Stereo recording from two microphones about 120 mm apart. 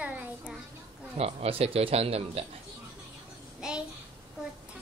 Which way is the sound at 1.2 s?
55° right (ahead or behind).